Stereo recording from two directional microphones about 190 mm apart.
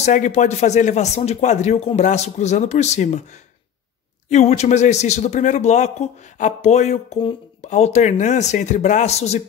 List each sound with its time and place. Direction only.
0.0 s a man's voice: 40° left (ahead or behind)
4.3 s a man's voice: 35° left (ahead or behind)